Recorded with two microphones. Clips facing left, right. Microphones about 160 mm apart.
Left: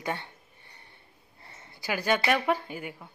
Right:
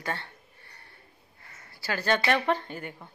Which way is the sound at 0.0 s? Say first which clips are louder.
Left 1 dB; 15° left (ahead or behind).